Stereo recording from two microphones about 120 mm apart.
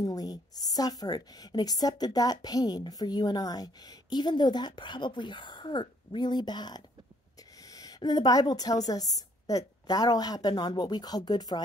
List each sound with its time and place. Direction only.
0.0 s a woman's voice: 30° left (ahead or behind)